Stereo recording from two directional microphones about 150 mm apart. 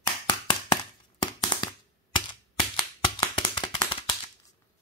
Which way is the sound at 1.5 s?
30° left (ahead or behind).